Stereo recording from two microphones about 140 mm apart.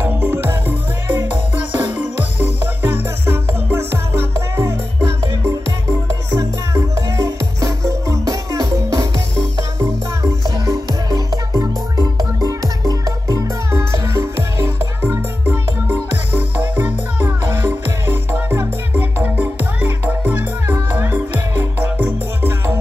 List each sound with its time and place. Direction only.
0.0 s music: 15° right (ahead or behind)
6.3 s music: 25° right (ahead or behind)
10.4 s music: 25° right (ahead or behind)
16.7 s music: 15° right (ahead or behind)